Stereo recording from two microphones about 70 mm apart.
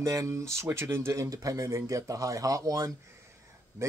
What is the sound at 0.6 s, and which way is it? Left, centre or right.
Speech, right.